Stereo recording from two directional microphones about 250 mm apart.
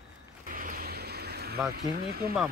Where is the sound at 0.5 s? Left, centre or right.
Right.